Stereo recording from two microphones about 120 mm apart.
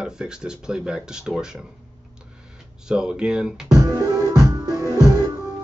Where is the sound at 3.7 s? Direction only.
25° right (ahead or behind).